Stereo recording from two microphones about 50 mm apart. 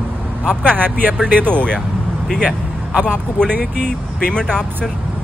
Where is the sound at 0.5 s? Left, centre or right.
Centre.